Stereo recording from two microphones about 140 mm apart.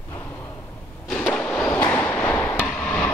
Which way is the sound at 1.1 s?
5° left (ahead or behind).